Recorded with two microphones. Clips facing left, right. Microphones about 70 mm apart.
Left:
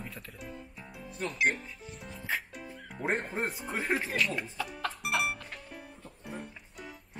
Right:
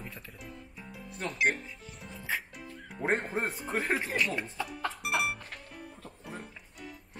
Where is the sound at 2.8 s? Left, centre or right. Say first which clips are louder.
Right 2 dB; centre.